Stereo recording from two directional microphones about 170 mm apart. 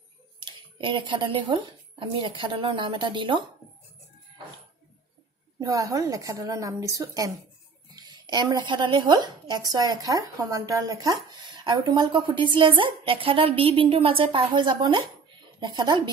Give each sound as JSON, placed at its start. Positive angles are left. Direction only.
{"t": 0.4, "sound": "speech", "side_deg": -30}
{"t": 5.6, "sound": "a woman's voice", "side_deg": -20}